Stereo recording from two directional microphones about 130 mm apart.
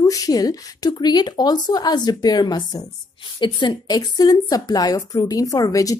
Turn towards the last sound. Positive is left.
turn(degrees=25)  # may be behind; listen again after turning